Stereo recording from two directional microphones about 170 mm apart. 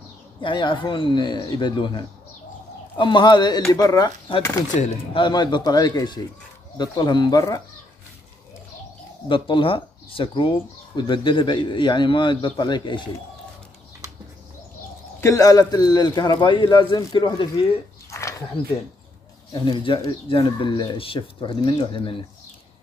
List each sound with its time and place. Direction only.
0.4 s speech: 30° left (ahead or behind)
5.1 s speech: 25° left (ahead or behind)
9.3 s speech: 30° left (ahead or behind)
15.1 s speech: 15° left (ahead or behind)
18.1 s wild animals: 20° left (ahead or behind)
18.6 s speech: 30° left (ahead or behind)